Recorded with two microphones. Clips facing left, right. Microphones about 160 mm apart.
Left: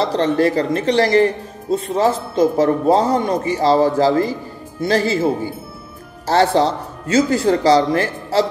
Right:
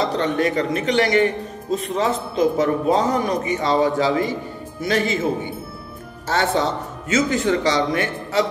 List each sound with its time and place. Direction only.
0.0 s speech: 35° left (ahead or behind)